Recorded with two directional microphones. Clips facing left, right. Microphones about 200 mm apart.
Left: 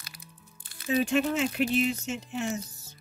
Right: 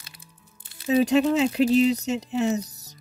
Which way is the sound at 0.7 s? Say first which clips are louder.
Right 6 dB; 30° right (ahead or behind).